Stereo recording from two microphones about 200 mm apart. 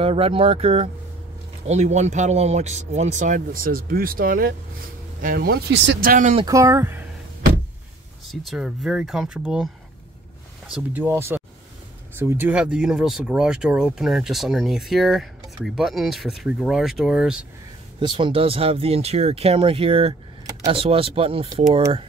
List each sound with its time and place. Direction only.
0.0 s speech: 25° right (ahead or behind)
6.4 s speech: 15° right (ahead or behind)
8.3 s speech: centre (ahead or behind)
10.7 s speech: 10° right (ahead or behind)
17.9 s speech: 25° right (ahead or behind)